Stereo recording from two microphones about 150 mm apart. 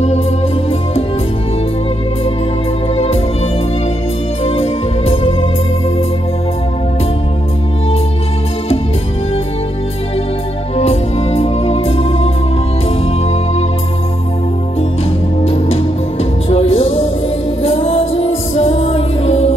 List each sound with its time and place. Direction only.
4.5 s music: 40° left (ahead or behind)
10.8 s music: 45° left (ahead or behind)
15.4 s music: 40° left (ahead or behind)